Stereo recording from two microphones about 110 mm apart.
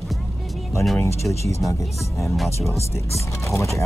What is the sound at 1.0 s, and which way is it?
Speech, 25° left (ahead or behind).